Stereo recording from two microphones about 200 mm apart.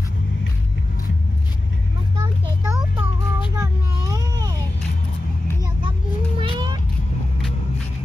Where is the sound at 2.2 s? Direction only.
20° right (ahead or behind).